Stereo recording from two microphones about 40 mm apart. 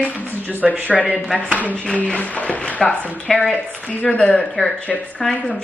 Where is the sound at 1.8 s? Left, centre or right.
Left.